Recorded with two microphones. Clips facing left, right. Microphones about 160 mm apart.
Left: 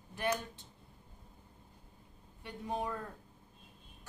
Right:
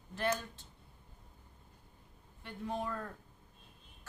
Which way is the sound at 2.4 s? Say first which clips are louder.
Left 1 dB; 15° left (ahead or behind).